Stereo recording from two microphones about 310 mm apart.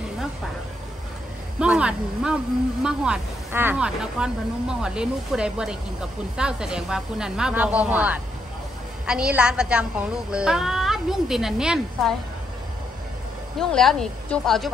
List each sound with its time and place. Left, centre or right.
1.6 s a woman's voice: centre
13.6 s a woman's voice: centre